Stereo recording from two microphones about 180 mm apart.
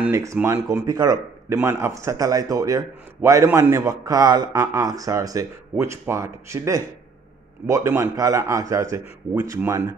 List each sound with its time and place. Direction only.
0.0 s speech: 15° right (ahead or behind)